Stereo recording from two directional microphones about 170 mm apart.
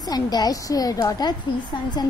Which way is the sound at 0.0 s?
25° left (ahead or behind).